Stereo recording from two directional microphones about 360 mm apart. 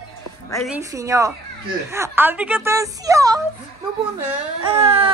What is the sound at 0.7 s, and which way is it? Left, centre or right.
A child's voice, centre.